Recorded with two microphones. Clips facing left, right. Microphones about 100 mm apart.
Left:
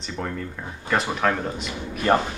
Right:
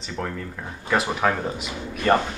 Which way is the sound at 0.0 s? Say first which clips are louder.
Even; centre (ahead or behind).